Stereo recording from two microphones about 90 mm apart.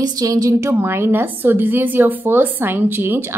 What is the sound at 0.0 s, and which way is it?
A woman's voice, 45° right (ahead or behind).